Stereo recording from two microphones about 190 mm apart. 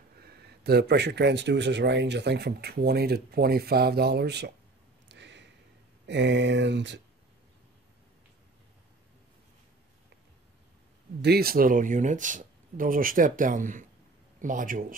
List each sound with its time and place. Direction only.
0.2 s speech: 60° right (ahead or behind)
5.0 s a sound: 65° right (ahead or behind)
6.0 s speech: 70° right (ahead or behind)
11.1 s speech: 55° right (ahead or behind)